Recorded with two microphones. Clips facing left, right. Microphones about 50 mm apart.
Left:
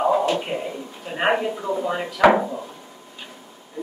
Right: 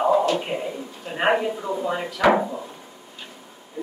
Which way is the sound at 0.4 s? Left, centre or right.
Centre.